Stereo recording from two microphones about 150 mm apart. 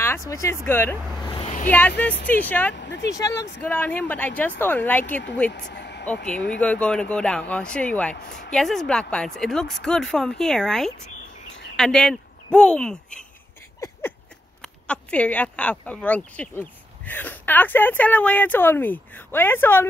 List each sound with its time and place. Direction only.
0.3 s speech: 20° left (ahead or behind)
1.2 s a sound: 30° left (ahead or behind)
1.7 s speech: 10° left (ahead or behind)
3.1 s speech: 20° left (ahead or behind)
3.5 s speech: 10° left (ahead or behind)
5.7 s vehicle: 90° left
6.4 s speech: 10° left (ahead or behind)
14.6 s speech: 10° left (ahead or behind)